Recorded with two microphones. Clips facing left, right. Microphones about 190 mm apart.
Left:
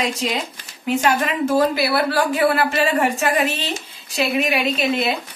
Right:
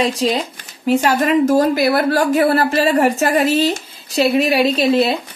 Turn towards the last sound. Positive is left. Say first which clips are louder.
# right 6 dB
turn(degrees=-35)  # may be behind; listen again after turning